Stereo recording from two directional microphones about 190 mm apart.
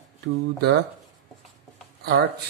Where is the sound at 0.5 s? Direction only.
55° right (ahead or behind).